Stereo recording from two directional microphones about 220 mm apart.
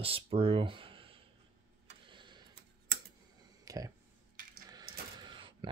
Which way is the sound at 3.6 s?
15° right (ahead or behind).